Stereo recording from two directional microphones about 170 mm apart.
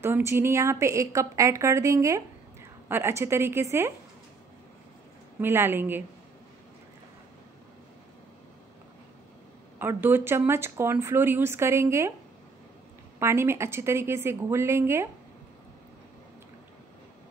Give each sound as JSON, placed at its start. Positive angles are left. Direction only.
{"t": 0.0, "sound": "speech", "side_deg": -15}
{"t": 5.4, "sound": "speech", "side_deg": -15}
{"t": 9.8, "sound": "speech", "side_deg": -10}
{"t": 13.2, "sound": "speech", "side_deg": -15}